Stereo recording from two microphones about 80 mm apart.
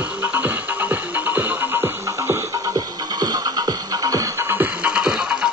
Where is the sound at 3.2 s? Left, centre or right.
Right.